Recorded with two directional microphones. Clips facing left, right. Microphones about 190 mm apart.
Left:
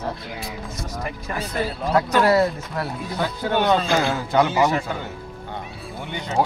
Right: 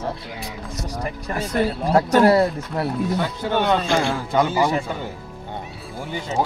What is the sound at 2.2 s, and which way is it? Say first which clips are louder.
Speech: right 2 dB; 25° right (ahead or behind).